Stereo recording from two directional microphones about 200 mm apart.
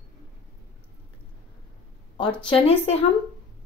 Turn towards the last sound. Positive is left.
turn(degrees=30)  # may be behind; listen again after turning